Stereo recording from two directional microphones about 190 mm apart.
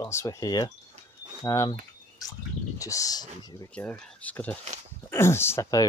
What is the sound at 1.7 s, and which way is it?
Typing, 20° left (ahead or behind).